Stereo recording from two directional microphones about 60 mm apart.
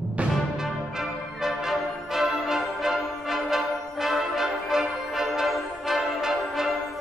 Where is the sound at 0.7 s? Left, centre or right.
Centre.